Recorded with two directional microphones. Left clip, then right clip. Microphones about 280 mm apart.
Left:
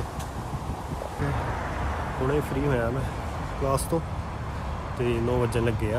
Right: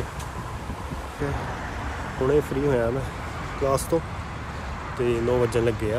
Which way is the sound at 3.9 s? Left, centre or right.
Centre.